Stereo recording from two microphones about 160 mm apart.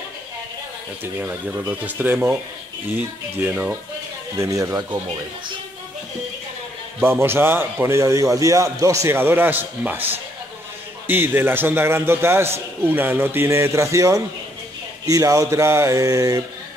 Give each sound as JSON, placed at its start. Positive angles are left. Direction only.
{"t": 1.2, "sound": "a man's voice", "side_deg": -10}
{"t": 3.3, "sound": "a man's voice", "side_deg": -5}
{"t": 4.4, "sound": "speech", "side_deg": -20}
{"t": 7.0, "sound": "a man's voice", "side_deg": -15}
{"t": 11.1, "sound": "a man's voice", "side_deg": -15}